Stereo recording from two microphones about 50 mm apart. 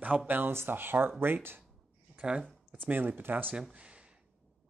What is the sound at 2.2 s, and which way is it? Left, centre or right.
Speech, centre.